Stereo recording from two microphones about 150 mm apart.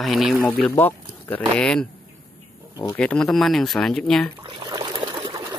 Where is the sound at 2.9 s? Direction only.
10° left (ahead or behind).